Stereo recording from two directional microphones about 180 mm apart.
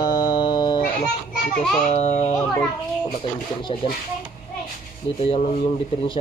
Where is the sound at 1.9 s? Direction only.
40° left (ahead or behind).